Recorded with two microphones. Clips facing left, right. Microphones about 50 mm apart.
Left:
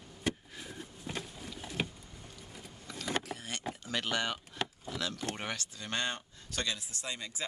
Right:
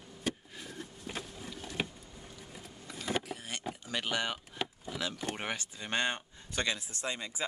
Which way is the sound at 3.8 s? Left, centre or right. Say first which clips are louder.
Even; centre.